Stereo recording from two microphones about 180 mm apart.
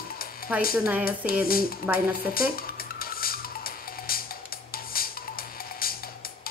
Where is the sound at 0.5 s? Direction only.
5° right (ahead or behind).